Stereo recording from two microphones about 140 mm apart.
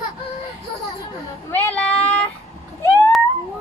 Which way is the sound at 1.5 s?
10° left (ahead or behind).